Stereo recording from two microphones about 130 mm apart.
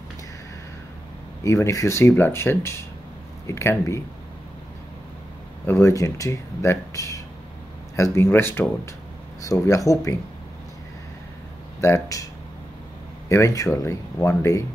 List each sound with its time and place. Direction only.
1.4 s speech: 25° left (ahead or behind)
5.7 s speech: 25° left (ahead or behind)
11.8 s speech: 25° left (ahead or behind)
13.3 s speech: 25° left (ahead or behind)